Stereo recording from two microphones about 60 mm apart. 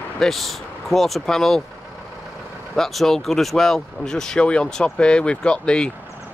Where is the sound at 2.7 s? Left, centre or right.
Centre.